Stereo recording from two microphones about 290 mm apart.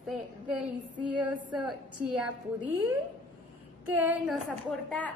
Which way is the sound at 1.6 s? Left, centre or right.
Centre.